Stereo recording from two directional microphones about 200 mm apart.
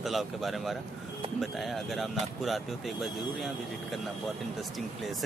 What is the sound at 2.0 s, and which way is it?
Speech, centre (ahead or behind).